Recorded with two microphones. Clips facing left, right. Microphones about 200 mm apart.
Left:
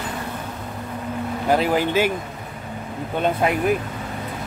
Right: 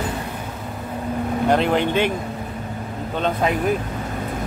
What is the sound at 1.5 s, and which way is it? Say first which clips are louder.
Speech: even; 5° left (ahead or behind).